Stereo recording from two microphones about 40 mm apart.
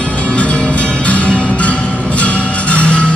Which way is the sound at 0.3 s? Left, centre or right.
Left.